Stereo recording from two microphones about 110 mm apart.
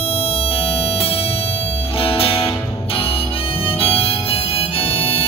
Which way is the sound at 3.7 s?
60° left (ahead or behind).